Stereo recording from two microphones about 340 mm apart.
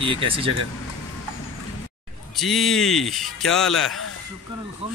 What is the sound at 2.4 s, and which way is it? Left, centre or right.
Speech, centre.